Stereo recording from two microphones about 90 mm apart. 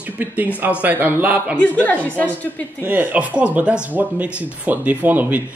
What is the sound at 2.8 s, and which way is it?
Speech, 20° right (ahead or behind).